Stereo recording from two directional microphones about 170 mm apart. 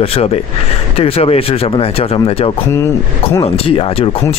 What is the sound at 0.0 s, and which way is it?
Speech, 35° left (ahead or behind).